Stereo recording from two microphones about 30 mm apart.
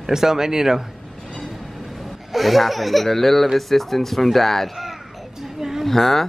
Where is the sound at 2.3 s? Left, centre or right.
Centre.